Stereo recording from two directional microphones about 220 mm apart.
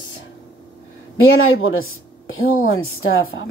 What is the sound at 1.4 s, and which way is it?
A woman's voice, 65° left (ahead or behind).